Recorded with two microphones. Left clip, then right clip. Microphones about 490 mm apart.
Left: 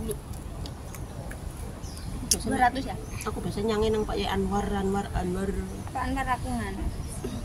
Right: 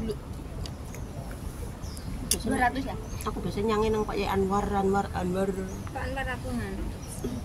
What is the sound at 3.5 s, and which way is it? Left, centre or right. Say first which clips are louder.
Speech: even; right.